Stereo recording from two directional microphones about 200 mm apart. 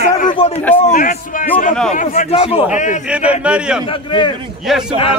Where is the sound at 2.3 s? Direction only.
30° left (ahead or behind).